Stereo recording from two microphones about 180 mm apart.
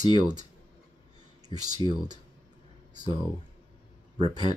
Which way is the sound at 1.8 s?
25° left (ahead or behind).